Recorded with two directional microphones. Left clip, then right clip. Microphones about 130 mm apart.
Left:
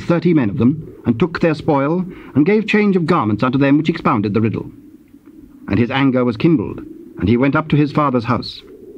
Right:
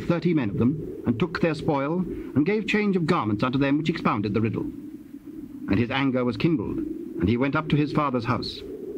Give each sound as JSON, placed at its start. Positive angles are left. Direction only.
{"t": 0.0, "sound": "speech", "side_deg": 35}
{"t": 5.7, "sound": "speech", "side_deg": 35}